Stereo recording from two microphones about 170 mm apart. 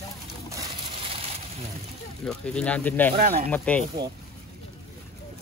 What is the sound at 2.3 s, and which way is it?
Speech, 5° left (ahead or behind).